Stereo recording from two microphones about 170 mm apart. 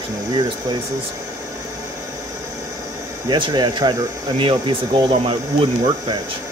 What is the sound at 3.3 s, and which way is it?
Speech, 25° right (ahead or behind).